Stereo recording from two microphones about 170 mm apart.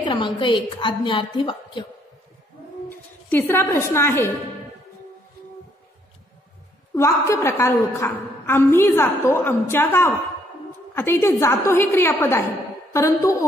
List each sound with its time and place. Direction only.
0.0 s a woman's voice: 30° left (ahead or behind)
2.9 s a woman's voice: 10° left (ahead or behind)
6.9 s a woman's voice: 20° left (ahead or behind)